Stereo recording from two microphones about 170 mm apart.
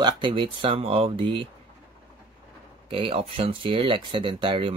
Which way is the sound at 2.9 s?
30° right (ahead or behind).